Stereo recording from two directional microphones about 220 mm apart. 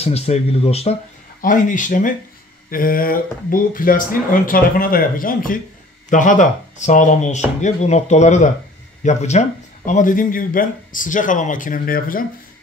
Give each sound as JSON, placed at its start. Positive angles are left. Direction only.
{"t": 0.0, "sound": "speech", "side_deg": 30}